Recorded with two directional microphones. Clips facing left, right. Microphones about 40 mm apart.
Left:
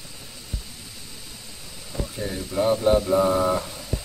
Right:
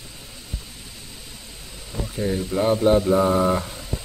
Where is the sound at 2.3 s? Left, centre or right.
Right.